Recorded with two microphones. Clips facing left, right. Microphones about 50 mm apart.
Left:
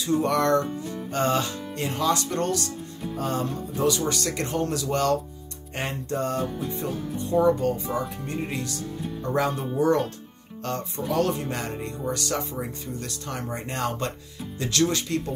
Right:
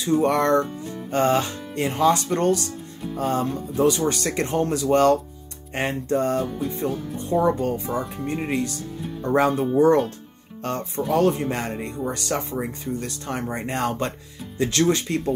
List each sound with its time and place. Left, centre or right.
0.0 s speech: right